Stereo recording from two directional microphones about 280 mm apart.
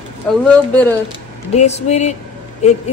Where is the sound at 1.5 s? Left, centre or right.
Left.